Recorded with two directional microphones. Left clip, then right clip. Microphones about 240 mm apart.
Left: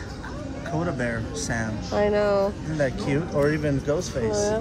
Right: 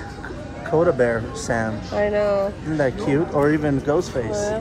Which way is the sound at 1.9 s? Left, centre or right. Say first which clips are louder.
Right 1 dB; left.